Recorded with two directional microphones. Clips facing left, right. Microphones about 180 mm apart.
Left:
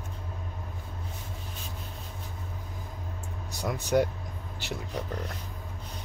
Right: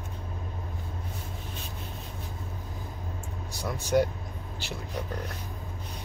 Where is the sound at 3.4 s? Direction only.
15° left (ahead or behind).